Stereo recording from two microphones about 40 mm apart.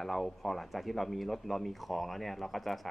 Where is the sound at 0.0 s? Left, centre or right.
Centre.